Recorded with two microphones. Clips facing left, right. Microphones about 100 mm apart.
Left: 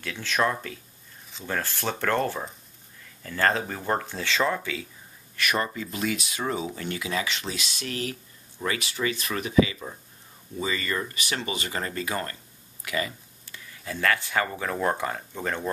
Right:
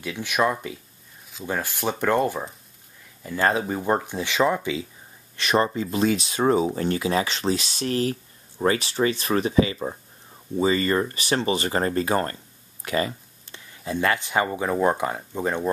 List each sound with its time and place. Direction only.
0.0 s speech: 15° right (ahead or behind); by 12.4 s 35° right (ahead or behind)
12.8 s a sound: 35° right (ahead or behind)
13.8 s speech: 20° right (ahead or behind)